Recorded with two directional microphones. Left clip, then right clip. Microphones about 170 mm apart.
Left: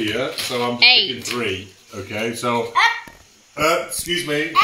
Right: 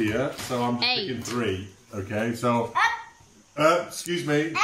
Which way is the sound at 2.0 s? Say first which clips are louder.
Left 3 dB; 10° right (ahead or behind).